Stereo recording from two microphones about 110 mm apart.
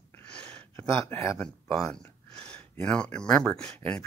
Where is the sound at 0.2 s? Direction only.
10° left (ahead or behind).